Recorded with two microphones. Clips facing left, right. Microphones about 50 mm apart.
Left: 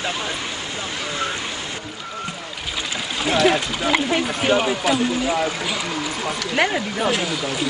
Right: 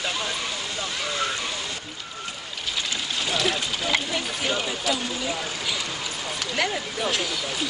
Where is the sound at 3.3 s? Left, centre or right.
Left.